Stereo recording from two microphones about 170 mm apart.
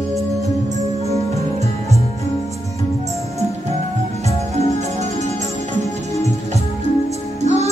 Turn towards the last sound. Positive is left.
turn(degrees=-40)  # may be behind; listen again after turning